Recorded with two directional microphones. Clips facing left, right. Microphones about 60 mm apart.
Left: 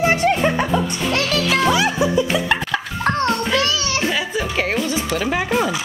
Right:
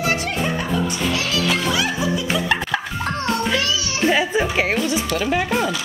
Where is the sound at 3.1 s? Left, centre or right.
Left.